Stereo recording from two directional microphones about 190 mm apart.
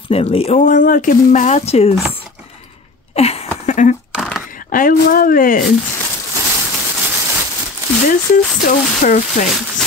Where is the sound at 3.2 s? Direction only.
30° left (ahead or behind).